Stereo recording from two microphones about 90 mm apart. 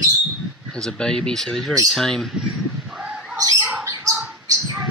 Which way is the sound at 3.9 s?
40° right (ahead or behind).